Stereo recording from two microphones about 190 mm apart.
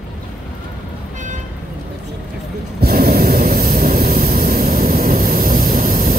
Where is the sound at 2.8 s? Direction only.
55° right (ahead or behind).